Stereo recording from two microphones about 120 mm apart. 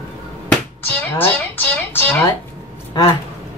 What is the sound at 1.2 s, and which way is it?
Music, 15° left (ahead or behind).